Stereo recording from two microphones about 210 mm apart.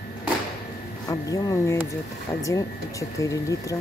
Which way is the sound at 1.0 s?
15° left (ahead or behind).